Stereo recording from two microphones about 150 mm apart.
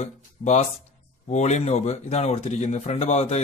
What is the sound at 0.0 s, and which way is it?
Speech, 50° left (ahead or behind).